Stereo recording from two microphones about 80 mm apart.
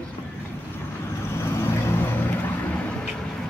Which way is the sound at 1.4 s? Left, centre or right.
Left.